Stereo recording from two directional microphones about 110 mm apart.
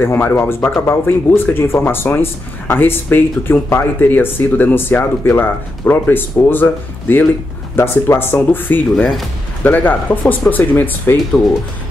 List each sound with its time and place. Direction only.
0.0 s speech: 20° left (ahead or behind)